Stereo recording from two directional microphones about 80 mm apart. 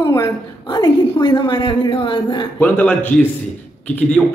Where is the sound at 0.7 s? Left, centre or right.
Left.